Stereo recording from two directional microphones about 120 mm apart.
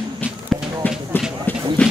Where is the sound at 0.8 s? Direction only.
15° left (ahead or behind).